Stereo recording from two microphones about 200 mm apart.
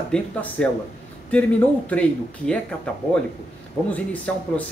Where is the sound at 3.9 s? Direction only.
10° left (ahead or behind).